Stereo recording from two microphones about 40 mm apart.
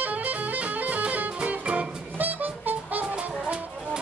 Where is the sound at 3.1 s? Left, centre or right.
Right.